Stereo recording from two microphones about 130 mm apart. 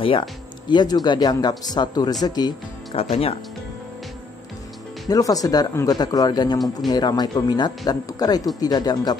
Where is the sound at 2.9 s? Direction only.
45° left (ahead or behind).